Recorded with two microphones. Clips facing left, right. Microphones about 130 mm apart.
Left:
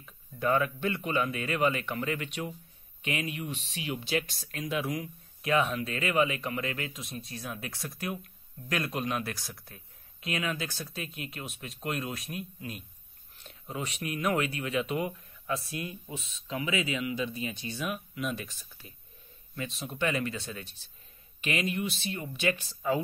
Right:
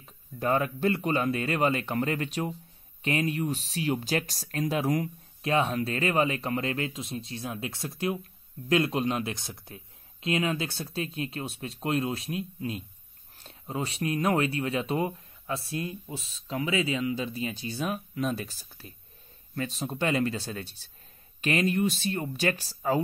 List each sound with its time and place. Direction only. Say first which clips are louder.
0.0 s speech: even; 35° right (ahead or behind)
5.4 s speech: right 2 dB; 30° right (ahead or behind)